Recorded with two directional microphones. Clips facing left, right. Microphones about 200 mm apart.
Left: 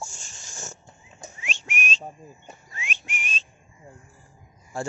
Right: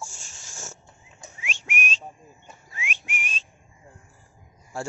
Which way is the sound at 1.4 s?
10° right (ahead or behind).